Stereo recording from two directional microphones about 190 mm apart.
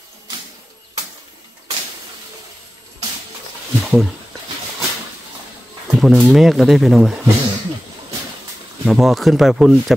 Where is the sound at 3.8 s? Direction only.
Centre (ahead or behind).